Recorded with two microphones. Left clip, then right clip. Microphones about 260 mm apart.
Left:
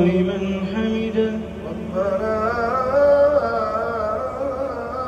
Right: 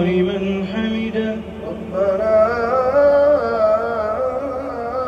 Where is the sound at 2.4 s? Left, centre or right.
Centre.